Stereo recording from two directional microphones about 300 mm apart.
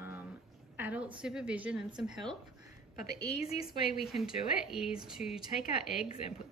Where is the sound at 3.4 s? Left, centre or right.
Left.